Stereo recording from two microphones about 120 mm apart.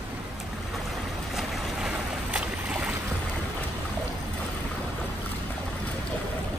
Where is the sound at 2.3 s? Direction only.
10° right (ahead or behind).